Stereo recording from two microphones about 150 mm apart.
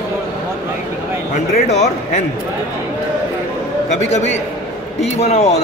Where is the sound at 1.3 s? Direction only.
50° left (ahead or behind).